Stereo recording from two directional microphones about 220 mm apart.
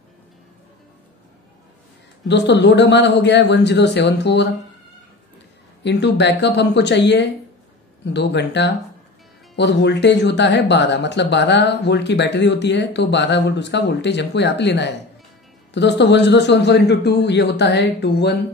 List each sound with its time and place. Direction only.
2.2 s speech: 50° left (ahead or behind)
5.9 s speech: 50° left (ahead or behind)